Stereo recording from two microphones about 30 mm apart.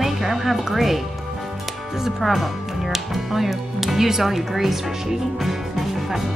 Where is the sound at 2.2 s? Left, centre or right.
Centre.